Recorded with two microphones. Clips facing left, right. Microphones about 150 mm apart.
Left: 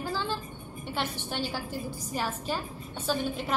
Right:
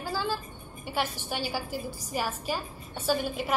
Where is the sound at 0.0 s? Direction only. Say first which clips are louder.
Right 1 dB; 5° right (ahead or behind).